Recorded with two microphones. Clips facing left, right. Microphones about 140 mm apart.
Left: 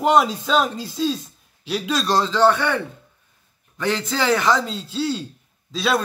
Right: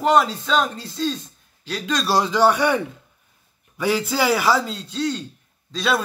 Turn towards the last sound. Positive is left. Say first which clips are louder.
# even
turn(degrees=5)  # may be behind; listen again after turning